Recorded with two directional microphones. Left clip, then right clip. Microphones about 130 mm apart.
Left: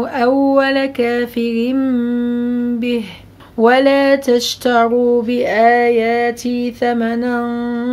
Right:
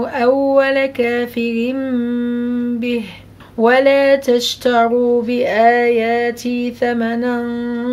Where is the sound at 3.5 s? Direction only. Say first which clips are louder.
Even; 35° left (ahead or behind).